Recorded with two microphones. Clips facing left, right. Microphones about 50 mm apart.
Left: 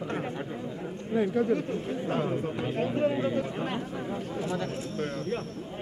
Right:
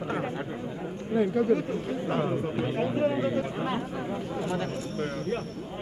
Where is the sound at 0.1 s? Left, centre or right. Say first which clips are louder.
Right 4 dB; centre.